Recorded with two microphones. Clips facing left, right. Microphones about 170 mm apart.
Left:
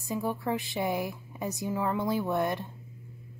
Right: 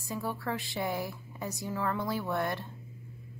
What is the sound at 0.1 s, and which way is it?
A woman's voice, 15° left (ahead or behind).